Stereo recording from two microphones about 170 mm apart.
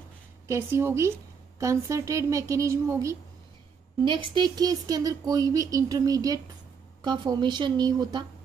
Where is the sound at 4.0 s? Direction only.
30° right (ahead or behind).